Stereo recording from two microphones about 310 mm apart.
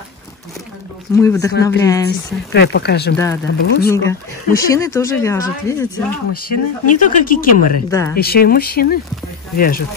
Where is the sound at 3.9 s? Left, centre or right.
Centre.